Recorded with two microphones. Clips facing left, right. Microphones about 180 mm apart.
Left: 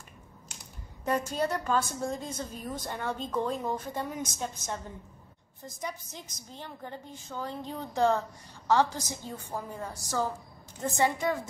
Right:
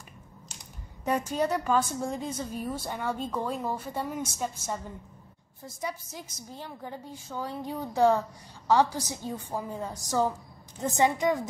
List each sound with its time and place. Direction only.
1.0 s a woman's voice: 15° right (ahead or behind)
5.8 s a woman's voice: 10° right (ahead or behind)